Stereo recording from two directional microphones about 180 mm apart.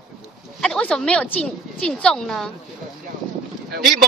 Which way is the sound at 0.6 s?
5° left (ahead or behind).